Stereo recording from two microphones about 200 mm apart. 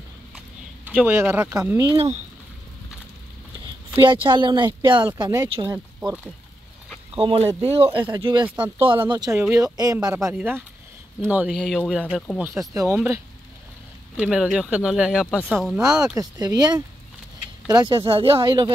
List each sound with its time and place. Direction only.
0.8 s speech: 10° right (ahead or behind)
4.0 s speech: 25° right (ahead or behind)
7.2 s speech: 25° right (ahead or behind); by 15.8 s 5° right (ahead or behind)
15.8 s speech: 15° right (ahead or behind)